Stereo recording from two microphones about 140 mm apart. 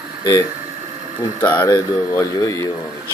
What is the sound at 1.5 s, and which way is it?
Speech, 20° left (ahead or behind).